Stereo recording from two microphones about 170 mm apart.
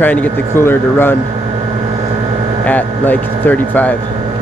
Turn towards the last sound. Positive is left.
turn(degrees=10)  # may be behind; listen again after turning